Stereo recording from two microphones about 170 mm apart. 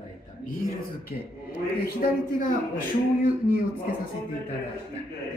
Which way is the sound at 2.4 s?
55° left (ahead or behind).